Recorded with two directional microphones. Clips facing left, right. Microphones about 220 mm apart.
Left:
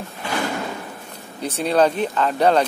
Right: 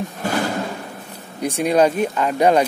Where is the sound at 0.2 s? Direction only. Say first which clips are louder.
Right 4 dB; 45° right (ahead or behind).